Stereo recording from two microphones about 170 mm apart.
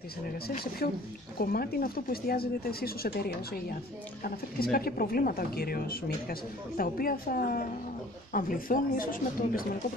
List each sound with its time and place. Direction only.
0.8 s speech: 60° left (ahead or behind)